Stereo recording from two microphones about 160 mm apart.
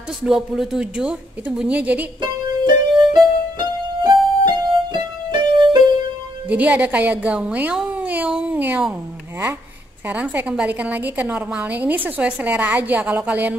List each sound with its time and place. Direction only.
0.2 s a woman's voice: 5° right (ahead or behind)
2.6 s music: 25° right (ahead or behind)
6.5 s speech: 10° right (ahead or behind)
10.0 s a woman's voice: 10° right (ahead or behind)